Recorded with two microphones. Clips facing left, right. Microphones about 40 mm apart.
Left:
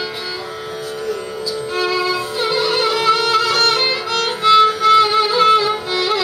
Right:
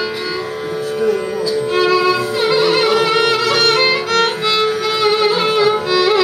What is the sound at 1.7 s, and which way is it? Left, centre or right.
Music, right.